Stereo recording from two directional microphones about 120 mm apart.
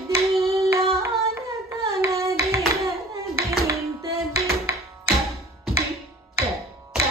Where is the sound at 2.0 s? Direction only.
25° right (ahead or behind).